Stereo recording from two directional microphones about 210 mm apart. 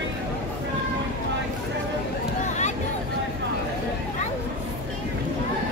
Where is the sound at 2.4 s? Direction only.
35° left (ahead or behind).